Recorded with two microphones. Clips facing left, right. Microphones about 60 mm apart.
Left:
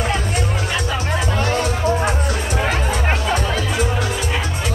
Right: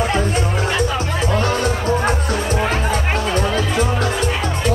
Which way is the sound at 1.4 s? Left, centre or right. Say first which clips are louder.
Even; right.